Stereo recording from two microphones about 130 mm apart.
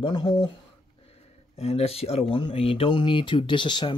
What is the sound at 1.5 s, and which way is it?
Speech, 55° left (ahead or behind).